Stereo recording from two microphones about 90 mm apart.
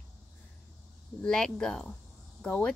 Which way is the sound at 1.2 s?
5° left (ahead or behind).